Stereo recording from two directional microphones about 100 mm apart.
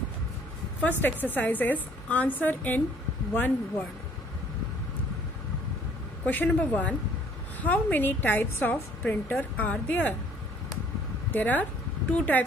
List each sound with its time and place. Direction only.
0.7 s a woman's voice: 15° left (ahead or behind)
6.2 s a woman's voice: 15° left (ahead or behind)
11.3 s a woman's voice: 20° left (ahead or behind)